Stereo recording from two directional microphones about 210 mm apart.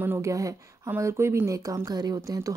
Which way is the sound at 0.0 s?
10° right (ahead or behind).